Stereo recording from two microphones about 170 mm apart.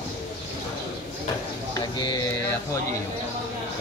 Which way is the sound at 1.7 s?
25° left (ahead or behind).